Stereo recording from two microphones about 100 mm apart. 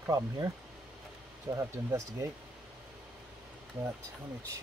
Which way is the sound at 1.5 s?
30° right (ahead or behind).